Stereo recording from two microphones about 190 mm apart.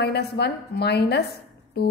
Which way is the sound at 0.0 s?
60° left (ahead or behind).